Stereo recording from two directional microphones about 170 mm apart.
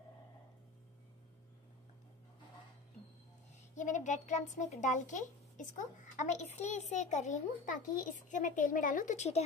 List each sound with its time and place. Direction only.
3.7 s a child's voice: 45° left (ahead or behind)